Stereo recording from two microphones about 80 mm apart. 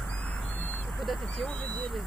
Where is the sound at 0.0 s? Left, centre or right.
Centre.